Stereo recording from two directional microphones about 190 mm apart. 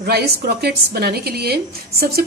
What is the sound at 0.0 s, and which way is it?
A woman's voice, 55° right (ahead or behind).